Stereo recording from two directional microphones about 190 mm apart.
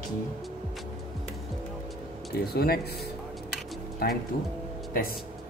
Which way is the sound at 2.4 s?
55° left (ahead or behind).